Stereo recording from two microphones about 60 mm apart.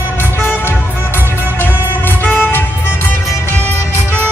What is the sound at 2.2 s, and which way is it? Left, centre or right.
Music, left.